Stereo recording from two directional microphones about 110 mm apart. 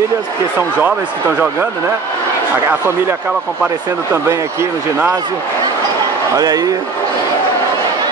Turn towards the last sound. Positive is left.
turn(degrees=-35)  # may be behind; listen again after turning